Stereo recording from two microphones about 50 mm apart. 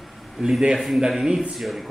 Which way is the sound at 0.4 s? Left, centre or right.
Centre.